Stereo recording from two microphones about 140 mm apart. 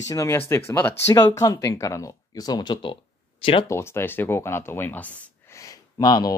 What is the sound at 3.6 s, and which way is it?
Speech, 20° left (ahead or behind).